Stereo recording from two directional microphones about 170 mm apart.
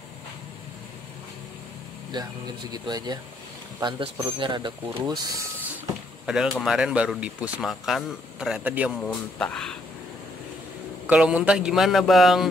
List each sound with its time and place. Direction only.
2.1 s speech: 25° right (ahead or behind)
6.2 s speech: 5° right (ahead or behind)
9.0 s speech: 5° left (ahead or behind)
11.1 s speech: 5° right (ahead or behind)